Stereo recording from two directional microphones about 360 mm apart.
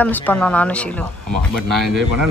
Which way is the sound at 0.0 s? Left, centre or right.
Centre.